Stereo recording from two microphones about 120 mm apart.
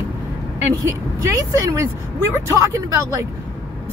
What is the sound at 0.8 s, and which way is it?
Speech, 25° right (ahead or behind).